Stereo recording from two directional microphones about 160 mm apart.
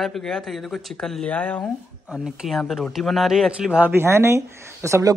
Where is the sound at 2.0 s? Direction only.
5° right (ahead or behind).